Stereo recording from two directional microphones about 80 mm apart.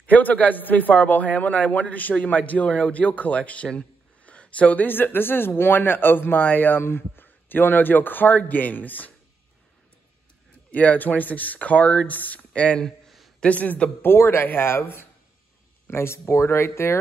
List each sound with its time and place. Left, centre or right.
0.0 s a man's voice: left
10.7 s speech: centre
13.4 s a man's voice: centre; by 16.9 s left